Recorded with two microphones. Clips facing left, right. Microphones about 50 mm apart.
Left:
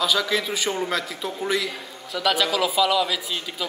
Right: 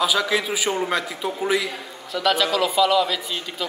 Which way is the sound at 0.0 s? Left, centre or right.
Centre.